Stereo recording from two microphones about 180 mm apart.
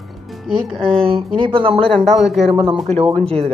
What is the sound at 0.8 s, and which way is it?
Speech, 30° right (ahead or behind).